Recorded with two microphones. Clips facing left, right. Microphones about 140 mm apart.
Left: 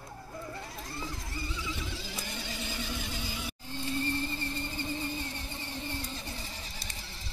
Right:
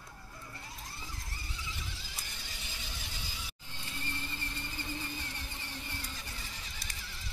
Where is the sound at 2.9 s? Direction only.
60° left (ahead or behind).